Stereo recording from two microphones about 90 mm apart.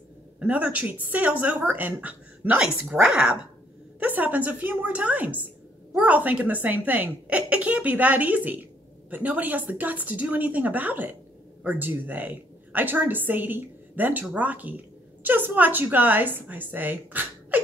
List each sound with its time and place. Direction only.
0.4 s a woman's voice: 15° right (ahead or behind)